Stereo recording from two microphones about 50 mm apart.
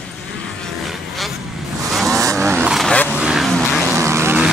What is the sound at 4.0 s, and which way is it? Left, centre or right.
Vehicle, right.